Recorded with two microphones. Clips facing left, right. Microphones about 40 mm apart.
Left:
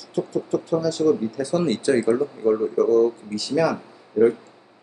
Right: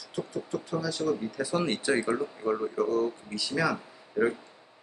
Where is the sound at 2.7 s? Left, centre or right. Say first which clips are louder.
Left 9 dB; centre.